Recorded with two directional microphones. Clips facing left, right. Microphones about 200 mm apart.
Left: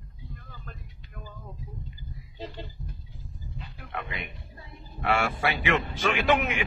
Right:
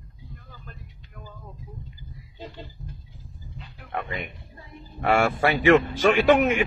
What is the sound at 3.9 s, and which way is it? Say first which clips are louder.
Speech: right 5 dB; 45° right (ahead or behind).